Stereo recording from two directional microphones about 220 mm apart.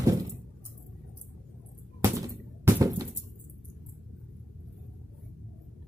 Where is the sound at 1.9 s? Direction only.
15° right (ahead or behind).